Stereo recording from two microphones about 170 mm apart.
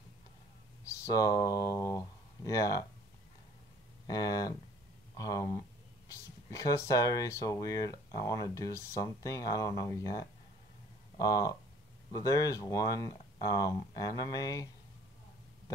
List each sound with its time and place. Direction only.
0.8 s speech: 20° left (ahead or behind)
4.1 s speech: 20° left (ahead or behind)